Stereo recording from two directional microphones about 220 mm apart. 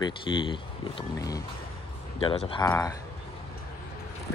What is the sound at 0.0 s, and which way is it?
Speech, 20° left (ahead or behind).